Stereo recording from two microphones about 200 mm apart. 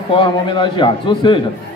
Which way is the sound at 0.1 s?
25° left (ahead or behind).